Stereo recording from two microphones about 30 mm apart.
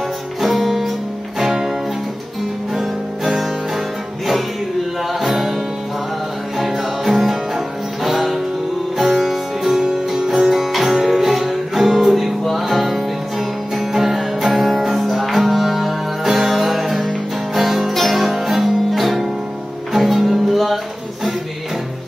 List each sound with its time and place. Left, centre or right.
0.4 s music: centre
1.4 s music: centre
2.7 s music: centre
5.2 s music: centre
6.6 s music: centre